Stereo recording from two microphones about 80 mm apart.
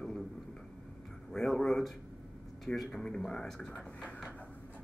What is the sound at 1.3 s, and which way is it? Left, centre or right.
A man's voice, centre.